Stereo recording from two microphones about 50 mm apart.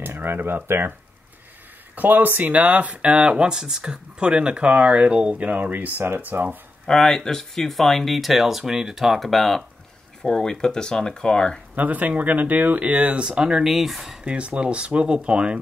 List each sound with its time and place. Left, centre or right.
0.0 s speech: right
2.0 s speech: right; by 5.4 s centre
5.4 s speech: right
6.9 s speech: centre
10.2 s speech: centre
11.7 s speech: right
13.4 s speech: centre
14.2 s speech: right